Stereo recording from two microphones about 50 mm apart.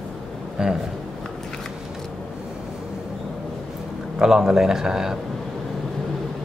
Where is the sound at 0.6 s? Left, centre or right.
Centre.